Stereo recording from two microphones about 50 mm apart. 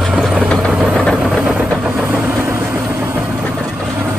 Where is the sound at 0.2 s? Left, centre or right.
Centre.